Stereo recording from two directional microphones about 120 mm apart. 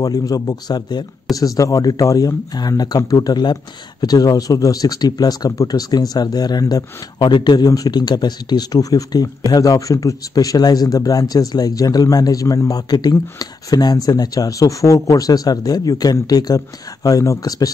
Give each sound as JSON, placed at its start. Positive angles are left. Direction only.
{"t": 0.0, "sound": "speech", "side_deg": 30}